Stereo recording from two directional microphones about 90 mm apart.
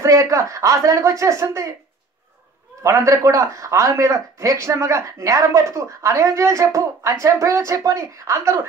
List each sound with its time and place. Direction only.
0.0 s a man's voice: 35° right (ahead or behind)
2.8 s a man's voice: 35° right (ahead or behind)